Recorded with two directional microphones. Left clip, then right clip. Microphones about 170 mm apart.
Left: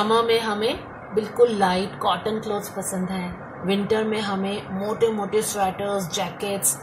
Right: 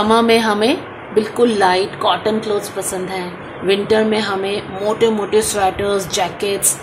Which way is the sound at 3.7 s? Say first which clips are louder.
Right 8 dB; 40° right (ahead or behind).